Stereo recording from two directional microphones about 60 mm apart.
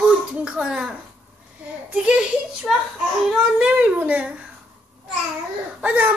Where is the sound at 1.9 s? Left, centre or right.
Right.